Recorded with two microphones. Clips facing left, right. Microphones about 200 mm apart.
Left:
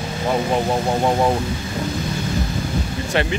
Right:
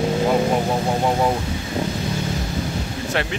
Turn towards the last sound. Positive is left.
turn(degrees=0)  # may be behind; listen again after turning